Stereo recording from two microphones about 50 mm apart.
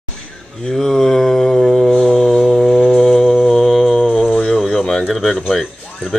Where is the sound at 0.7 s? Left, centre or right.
Centre.